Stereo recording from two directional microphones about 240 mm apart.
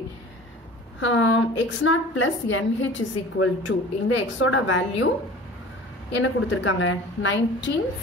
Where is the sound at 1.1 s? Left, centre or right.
Left.